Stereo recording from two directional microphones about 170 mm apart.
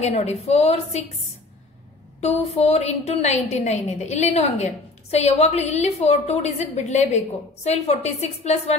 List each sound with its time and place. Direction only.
0.0 s a woman's voice: 40° left (ahead or behind)
2.2 s a woman's voice: 35° left (ahead or behind)